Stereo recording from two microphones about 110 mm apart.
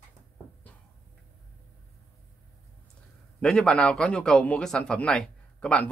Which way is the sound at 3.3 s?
5° left (ahead or behind).